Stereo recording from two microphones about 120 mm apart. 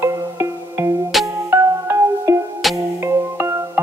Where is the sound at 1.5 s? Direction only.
20° right (ahead or behind).